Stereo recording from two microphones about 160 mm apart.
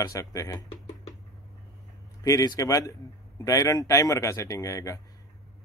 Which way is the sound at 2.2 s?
20° left (ahead or behind).